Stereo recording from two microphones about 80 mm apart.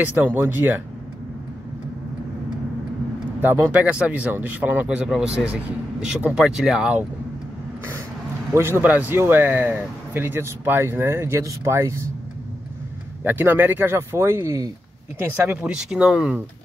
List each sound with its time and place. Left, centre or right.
0.0 s speech: right
3.7 s a man's voice: centre
8.5 s a man's voice: right
8.8 s speech: right
13.2 s speech: right
15.6 s a man's voice: centre